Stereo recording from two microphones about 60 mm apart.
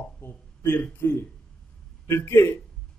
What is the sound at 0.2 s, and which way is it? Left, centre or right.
Speech, left.